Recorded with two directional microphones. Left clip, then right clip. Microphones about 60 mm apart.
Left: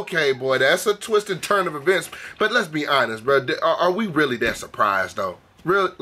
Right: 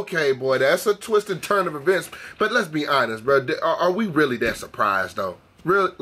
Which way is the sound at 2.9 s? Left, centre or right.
Centre.